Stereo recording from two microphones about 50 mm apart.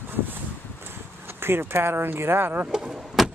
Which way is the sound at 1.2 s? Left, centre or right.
Right.